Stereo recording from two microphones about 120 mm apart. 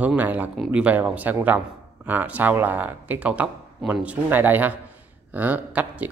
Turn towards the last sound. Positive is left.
turn(degrees=-10)  # may be behind; listen again after turning